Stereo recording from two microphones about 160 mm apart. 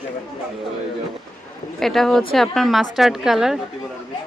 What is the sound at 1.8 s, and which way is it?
Speech, centre (ahead or behind).